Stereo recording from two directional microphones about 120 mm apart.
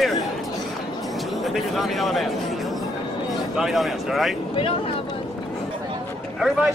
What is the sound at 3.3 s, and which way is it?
Speech, centre (ahead or behind).